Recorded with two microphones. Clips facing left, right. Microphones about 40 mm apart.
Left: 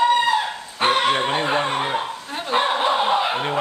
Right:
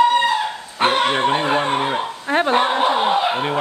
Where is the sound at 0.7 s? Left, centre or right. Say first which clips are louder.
Right 1 dB; centre.